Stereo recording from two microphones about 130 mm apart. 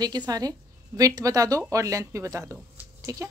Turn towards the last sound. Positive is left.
turn(degrees=-25)  # may be behind; listen again after turning